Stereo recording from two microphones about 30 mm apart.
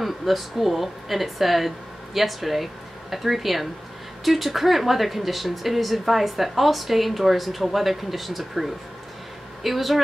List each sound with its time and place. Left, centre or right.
0.0 s speech: centre